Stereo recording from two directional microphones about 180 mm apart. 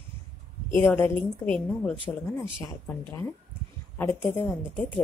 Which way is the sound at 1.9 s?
25° right (ahead or behind).